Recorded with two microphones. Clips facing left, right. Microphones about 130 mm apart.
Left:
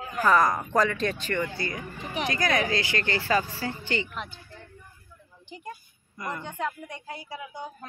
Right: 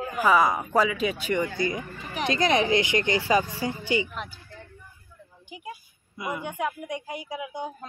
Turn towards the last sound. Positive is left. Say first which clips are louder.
# right 4 dB
turn(degrees=-15)  # may be behind; listen again after turning